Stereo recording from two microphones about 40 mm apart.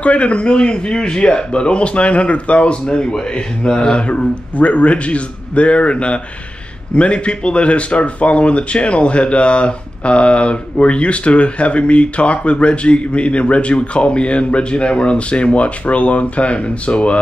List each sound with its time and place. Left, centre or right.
0.0 s speech: left
4.6 s a man's voice: left